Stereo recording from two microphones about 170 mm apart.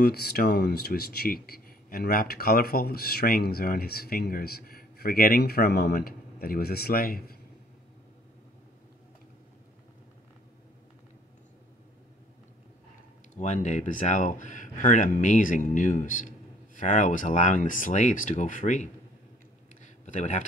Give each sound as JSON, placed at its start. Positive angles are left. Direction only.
{"t": 0.0, "sound": "speech", "side_deg": 65}
{"t": 13.4, "sound": "speech", "side_deg": 45}
{"t": 19.8, "sound": "a sound", "side_deg": 45}